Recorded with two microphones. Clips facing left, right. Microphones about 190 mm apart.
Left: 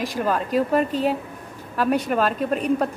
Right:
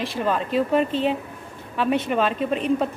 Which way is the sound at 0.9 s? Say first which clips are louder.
Even; 40° left (ahead or behind).